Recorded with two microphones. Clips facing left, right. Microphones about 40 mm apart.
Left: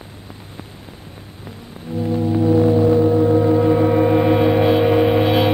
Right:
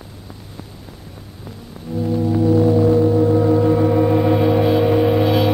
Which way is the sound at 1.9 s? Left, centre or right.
Left.